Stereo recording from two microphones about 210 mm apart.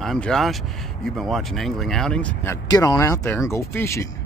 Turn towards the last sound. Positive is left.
turn(degrees=10)  # may be behind; listen again after turning